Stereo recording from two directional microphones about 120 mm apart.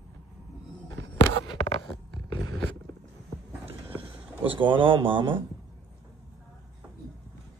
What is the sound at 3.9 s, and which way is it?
Speech, 50° right (ahead or behind).